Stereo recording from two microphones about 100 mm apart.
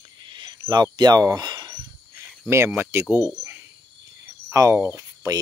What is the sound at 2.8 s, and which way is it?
Speech, 20° right (ahead or behind).